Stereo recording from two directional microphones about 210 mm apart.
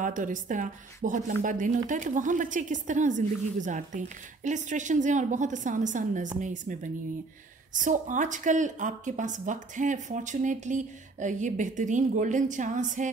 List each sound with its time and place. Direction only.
0.0 s a woman's voice: 40° right (ahead or behind)